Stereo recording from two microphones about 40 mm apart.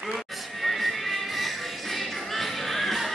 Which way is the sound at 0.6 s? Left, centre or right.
Centre.